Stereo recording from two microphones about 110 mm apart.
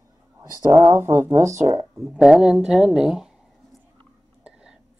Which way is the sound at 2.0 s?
5° right (ahead or behind).